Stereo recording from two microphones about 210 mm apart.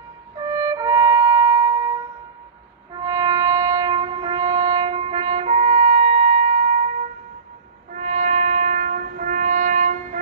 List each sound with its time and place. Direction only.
0.4 s music: 15° right (ahead or behind)
2.9 s wind instrument: 20° right (ahead or behind)
7.9 s brass instrument: 35° right (ahead or behind)